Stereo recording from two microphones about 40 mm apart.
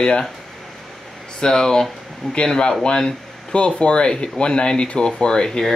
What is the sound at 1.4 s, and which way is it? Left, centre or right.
Speech, centre.